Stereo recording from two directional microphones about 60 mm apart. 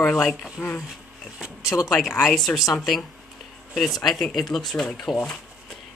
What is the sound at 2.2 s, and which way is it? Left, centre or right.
Speech, centre.